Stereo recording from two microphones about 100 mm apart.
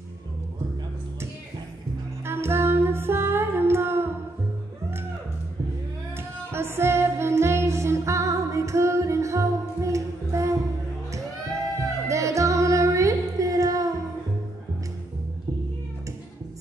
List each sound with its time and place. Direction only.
2.2 s music: 25° right (ahead or behind)
6.1 s music: 25° right (ahead or behind)
12.1 s music: 30° right (ahead or behind)